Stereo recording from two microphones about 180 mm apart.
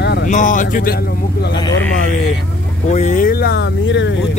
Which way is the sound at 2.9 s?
40° left (ahead or behind).